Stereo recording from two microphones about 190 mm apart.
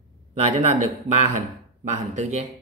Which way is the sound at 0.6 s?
40° right (ahead or behind).